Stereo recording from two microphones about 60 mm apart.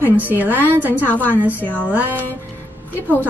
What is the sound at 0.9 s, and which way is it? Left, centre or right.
Speech, left.